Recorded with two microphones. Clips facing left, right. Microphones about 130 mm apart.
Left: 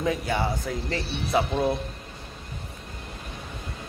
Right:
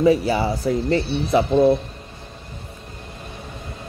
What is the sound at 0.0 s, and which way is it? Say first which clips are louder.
Speech: right 9 dB; 5° right (ahead or behind).